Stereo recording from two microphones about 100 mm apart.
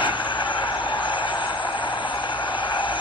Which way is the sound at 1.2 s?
55° left (ahead or behind).